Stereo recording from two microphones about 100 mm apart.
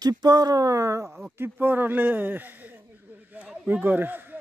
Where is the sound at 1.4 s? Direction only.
20° right (ahead or behind).